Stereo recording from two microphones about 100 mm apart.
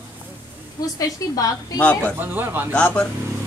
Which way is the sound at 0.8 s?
40° left (ahead or behind).